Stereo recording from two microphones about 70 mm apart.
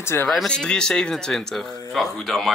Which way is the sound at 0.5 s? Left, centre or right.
Centre.